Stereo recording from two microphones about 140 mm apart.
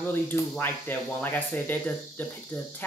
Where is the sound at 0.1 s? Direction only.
15° left (ahead or behind).